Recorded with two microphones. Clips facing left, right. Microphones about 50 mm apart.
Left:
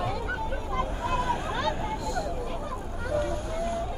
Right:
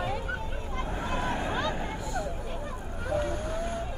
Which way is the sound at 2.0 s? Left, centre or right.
Right.